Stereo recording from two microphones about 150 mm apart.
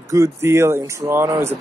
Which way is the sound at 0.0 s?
20° right (ahead or behind).